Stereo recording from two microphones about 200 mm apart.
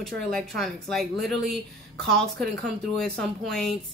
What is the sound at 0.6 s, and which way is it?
Speech, centre (ahead or behind).